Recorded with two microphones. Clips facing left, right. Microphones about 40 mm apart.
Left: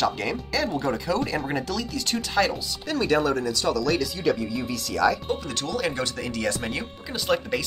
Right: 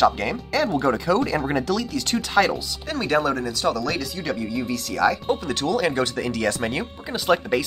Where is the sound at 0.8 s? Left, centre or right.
Right.